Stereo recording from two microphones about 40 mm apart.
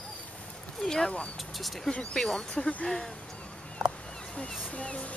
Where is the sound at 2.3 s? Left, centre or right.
Left.